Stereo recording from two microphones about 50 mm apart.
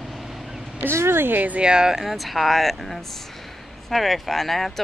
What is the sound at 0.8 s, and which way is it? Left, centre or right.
Speech, right.